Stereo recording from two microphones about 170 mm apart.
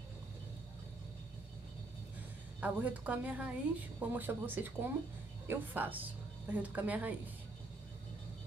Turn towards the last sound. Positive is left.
turn(degrees=-10)  # may be behind; listen again after turning